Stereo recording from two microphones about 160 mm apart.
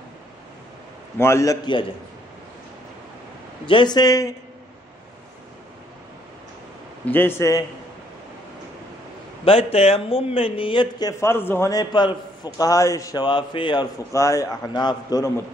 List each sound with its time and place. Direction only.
1.1 s a man's voice: 15° left (ahead or behind)
3.6 s a man's voice: 30° left (ahead or behind)
7.1 s a man's voice: 15° left (ahead or behind)
9.4 s a man's voice: 35° left (ahead or behind)
14.1 s a man's voice: 20° left (ahead or behind)